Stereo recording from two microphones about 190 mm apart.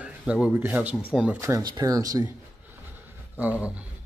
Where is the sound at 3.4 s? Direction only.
10° right (ahead or behind).